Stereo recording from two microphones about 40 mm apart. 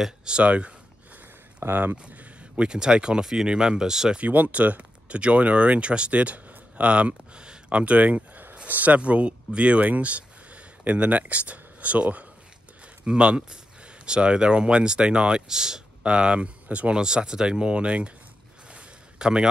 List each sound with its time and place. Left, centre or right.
0.0 s speech: centre
0.4 s speech: right
1.6 s speech: right
2.0 s speech: right
4.2 s speech: right; by 16.1 s centre
16.1 s speech: right
16.9 s speech: right
18.7 s a sound: right